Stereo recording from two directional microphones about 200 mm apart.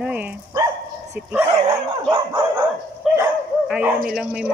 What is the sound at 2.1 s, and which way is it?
Dog, 20° right (ahead or behind).